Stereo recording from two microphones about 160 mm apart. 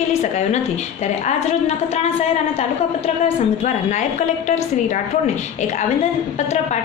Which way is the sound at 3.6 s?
45° left (ahead or behind).